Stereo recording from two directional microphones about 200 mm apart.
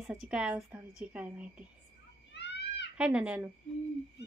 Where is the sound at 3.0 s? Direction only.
5° right (ahead or behind).